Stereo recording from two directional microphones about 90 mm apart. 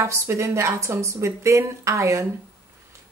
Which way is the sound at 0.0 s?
30° right (ahead or behind).